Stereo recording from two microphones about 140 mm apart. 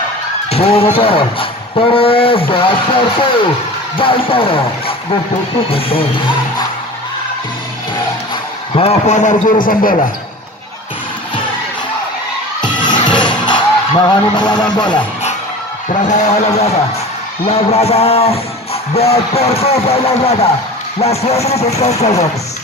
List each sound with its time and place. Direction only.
0.5 s speech: 45° left (ahead or behind)
8.7 s a man's voice: 50° left (ahead or behind)
9.6 s a man's voice: 80° left
12.6 s music: 35° left (ahead or behind)
16.1 s a man's voice: 55° left (ahead or behind)